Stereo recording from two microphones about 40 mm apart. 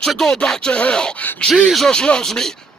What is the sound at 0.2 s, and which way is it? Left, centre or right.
Speech, centre.